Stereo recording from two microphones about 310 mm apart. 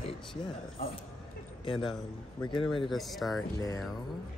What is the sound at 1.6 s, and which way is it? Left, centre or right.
Speech, centre.